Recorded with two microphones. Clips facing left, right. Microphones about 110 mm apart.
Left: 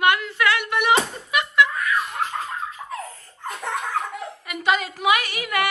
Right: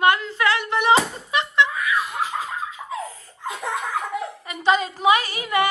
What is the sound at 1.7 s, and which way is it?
Laughter, 5° right (ahead or behind).